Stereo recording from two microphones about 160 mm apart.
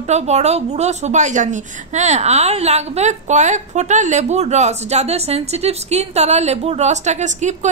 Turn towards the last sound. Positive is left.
turn(degrees=-45)  # may be behind; listen again after turning